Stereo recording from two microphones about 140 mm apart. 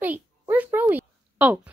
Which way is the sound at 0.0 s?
10° right (ahead or behind).